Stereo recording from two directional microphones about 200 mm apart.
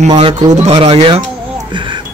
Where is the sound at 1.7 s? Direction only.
25° right (ahead or behind).